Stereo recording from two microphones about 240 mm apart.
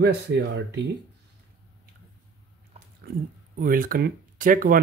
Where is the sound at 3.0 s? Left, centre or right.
Right.